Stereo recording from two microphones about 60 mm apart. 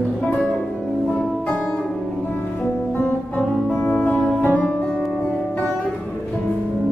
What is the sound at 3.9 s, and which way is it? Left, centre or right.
Music, left.